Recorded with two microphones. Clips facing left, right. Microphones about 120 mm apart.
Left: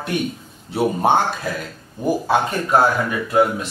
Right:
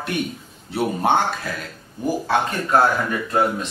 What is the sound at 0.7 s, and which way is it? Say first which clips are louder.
Speech: left 2 dB; 15° left (ahead or behind).